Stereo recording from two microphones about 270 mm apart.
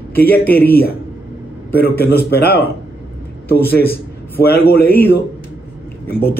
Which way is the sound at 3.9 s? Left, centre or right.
Left.